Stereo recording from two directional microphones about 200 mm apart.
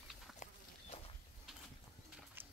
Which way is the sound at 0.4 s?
30° left (ahead or behind).